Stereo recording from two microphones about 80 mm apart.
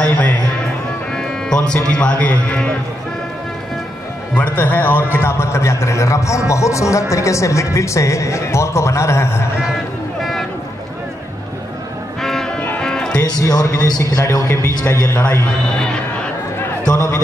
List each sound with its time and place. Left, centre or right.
1.1 s speech: centre
4.4 s speech: left
12.2 s music: centre
12.5 s music: centre
13.2 s a man's voice: left
16.8 s a sound: left